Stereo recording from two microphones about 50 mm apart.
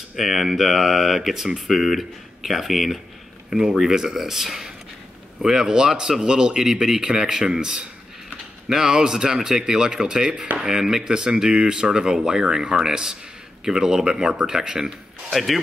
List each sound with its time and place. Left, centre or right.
0.1 s speech: centre
3.4 s speech: centre
15.3 s speech: centre